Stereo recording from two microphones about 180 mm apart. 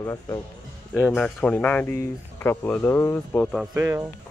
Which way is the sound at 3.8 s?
15° right (ahead or behind).